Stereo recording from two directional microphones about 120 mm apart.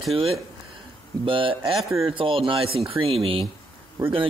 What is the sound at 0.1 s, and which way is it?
Speech, 55° right (ahead or behind).